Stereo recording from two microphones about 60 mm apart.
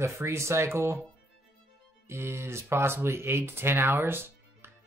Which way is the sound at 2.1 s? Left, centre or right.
Right.